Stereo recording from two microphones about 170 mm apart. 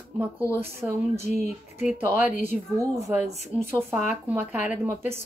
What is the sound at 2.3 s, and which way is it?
Speech, 50° left (ahead or behind).